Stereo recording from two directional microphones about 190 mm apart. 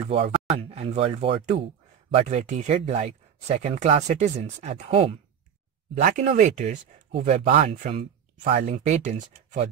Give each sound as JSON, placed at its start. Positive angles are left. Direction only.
{"t": 0.0, "sound": "speech", "side_deg": -30}